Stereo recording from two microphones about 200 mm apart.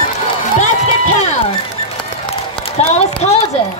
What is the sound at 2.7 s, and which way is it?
Speech, 35° left (ahead or behind).